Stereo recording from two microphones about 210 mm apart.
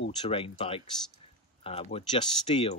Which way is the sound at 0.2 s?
25° left (ahead or behind).